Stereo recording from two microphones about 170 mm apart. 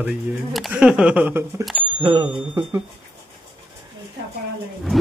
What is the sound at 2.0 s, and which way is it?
Speech, 30° right (ahead or behind).